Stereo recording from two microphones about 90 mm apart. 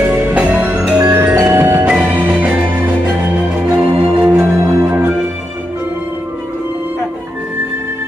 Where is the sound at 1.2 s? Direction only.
25° right (ahead or behind).